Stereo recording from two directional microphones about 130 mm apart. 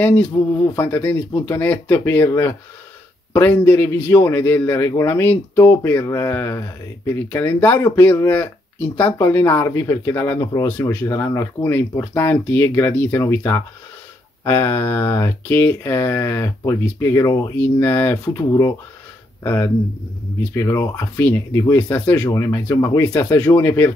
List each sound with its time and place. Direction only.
0.3 s speech: 25° left (ahead or behind)
0.8 s speech: 15° left (ahead or behind)
17.6 s speech: 15° left (ahead or behind)
22.3 s speech: 25° left (ahead or behind)